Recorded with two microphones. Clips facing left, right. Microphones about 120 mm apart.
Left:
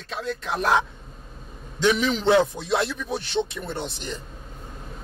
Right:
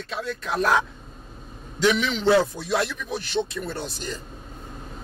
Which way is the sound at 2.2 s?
20° left (ahead or behind).